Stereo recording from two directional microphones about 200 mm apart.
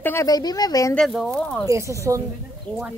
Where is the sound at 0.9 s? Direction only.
Centre (ahead or behind).